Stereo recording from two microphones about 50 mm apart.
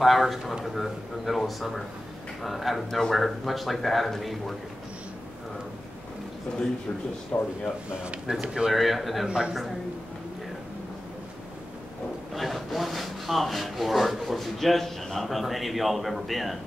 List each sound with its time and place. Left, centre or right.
0.0 s speech: centre
7.3 s speech: left
8.3 s speech: centre
8.7 s speech: centre
12.4 s speech: centre